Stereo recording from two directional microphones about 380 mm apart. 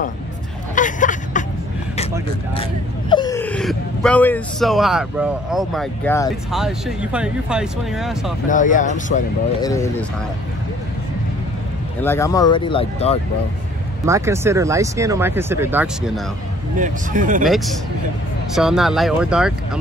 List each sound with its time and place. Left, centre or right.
0.7 s vehicle: centre
3.1 s speech: centre
8.5 s speech: centre
9.7 s speech: centre
12.0 s speech: centre
14.0 s speech: centre
16.8 s speech: centre
18.5 s speech: centre